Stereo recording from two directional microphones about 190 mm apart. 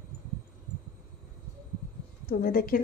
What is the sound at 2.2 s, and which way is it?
Speech, 50° left (ahead or behind).